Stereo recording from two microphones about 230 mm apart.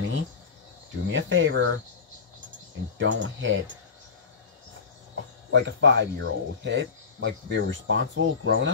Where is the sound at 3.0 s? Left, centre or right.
Right.